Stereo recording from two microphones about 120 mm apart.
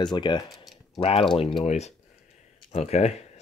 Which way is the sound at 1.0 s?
55° left (ahead or behind).